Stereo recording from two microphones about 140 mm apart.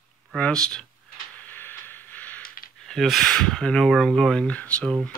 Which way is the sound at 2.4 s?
90° left.